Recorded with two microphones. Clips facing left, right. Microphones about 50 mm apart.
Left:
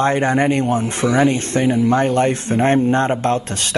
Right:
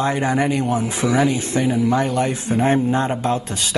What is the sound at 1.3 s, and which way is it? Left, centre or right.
A man's voice, left.